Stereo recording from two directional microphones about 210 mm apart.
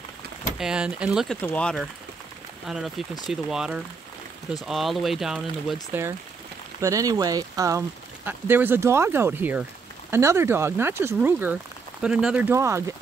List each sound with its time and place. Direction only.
0.6 s speech: 5° right (ahead or behind)
5.9 s speech: 10° right (ahead or behind)